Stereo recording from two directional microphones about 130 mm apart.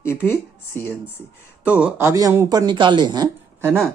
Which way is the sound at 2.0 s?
25° right (ahead or behind).